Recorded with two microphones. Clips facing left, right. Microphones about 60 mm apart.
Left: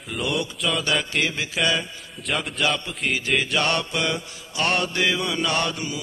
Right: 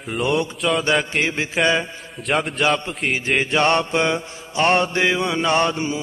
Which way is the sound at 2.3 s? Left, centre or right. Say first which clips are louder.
Right 5 dB; centre.